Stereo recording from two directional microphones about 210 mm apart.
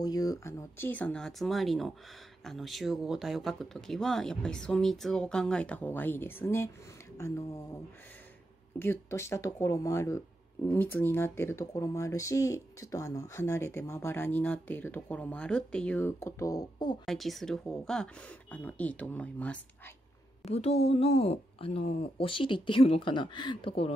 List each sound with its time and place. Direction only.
0.0 s speech: 15° left (ahead or behind)
17.0 s speech: centre (ahead or behind)
20.4 s speech: 30° left (ahead or behind)